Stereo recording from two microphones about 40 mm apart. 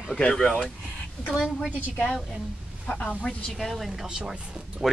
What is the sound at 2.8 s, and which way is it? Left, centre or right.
Speech, left.